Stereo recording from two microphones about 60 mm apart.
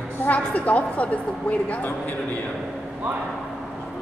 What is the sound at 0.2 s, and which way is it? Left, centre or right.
A woman's voice, left.